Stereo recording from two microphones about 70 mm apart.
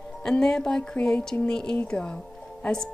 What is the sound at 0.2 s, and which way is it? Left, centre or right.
A woman's voice, centre.